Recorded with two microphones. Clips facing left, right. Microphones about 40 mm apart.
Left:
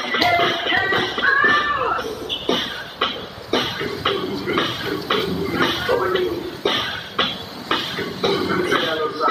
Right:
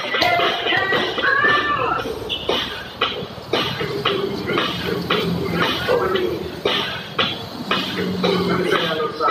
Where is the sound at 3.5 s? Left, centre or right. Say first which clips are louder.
Right 1 dB; centre.